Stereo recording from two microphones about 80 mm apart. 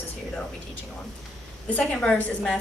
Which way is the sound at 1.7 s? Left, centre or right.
Centre.